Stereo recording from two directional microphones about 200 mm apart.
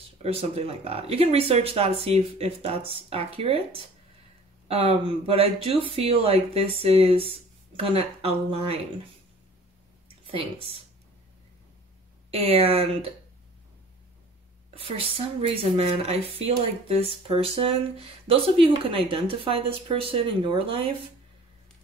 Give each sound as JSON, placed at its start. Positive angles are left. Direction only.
{"t": 0.2, "sound": "speech", "side_deg": -30}
{"t": 10.0, "sound": "a sound", "side_deg": -25}
{"t": 12.3, "sound": "speech", "side_deg": -30}
{"t": 14.7, "sound": "speech", "side_deg": -25}